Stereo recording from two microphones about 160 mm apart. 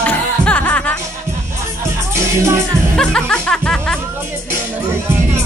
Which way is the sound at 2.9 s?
5° left (ahead or behind).